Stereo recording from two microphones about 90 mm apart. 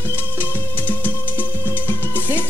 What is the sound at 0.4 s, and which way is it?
Music, 20° left (ahead or behind).